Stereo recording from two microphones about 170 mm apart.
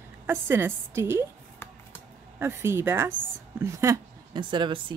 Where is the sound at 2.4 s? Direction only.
15° right (ahead or behind).